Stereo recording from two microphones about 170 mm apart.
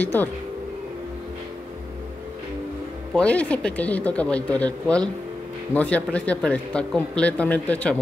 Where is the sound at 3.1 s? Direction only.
5° left (ahead or behind).